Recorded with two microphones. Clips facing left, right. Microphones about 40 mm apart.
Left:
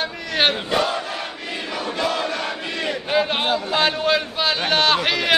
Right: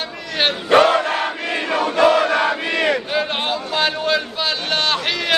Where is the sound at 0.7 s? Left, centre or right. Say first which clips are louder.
Right 8 dB; right.